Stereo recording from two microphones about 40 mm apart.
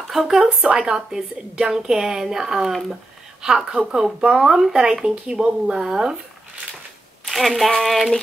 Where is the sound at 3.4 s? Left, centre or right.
Centre.